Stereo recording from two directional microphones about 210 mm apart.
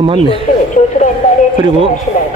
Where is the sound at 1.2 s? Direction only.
35° left (ahead or behind).